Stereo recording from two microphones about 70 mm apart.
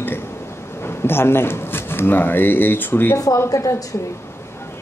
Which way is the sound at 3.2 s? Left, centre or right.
Left.